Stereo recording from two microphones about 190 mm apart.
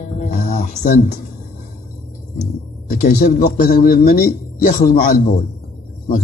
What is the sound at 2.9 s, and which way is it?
A man's voice, 50° left (ahead or behind).